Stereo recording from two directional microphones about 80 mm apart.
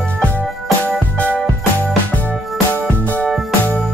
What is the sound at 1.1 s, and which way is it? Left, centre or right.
Music, centre.